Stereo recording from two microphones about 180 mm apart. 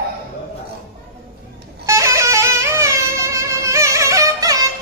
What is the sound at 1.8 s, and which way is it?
Music, 15° right (ahead or behind).